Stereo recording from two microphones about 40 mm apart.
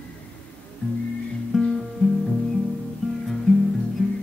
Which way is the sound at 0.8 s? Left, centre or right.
Left.